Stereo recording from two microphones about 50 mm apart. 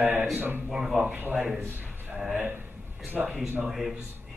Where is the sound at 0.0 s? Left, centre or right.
Right.